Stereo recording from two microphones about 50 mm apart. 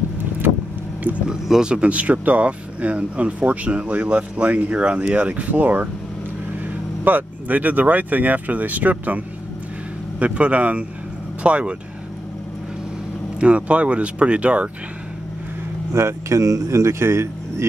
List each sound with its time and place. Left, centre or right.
1.1 s speech: right
1.5 s speech: centre; by 5.9 s right
7.1 s speech: right
13.4 s speech: right
15.9 s speech: right